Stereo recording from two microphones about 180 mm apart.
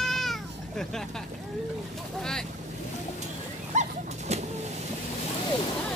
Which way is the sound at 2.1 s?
5° left (ahead or behind).